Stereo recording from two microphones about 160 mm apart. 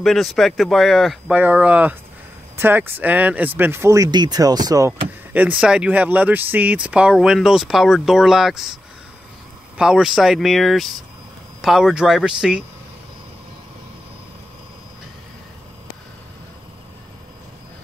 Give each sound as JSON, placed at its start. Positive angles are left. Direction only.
{"t": 0.0, "sound": "speech", "side_deg": 0}
{"t": 5.3, "sound": "speech", "side_deg": -10}
{"t": 9.8, "sound": "speech", "side_deg": -5}